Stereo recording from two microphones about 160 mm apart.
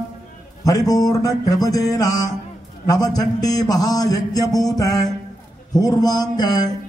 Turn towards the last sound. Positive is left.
turn(degrees=25)  # may be behind; listen again after turning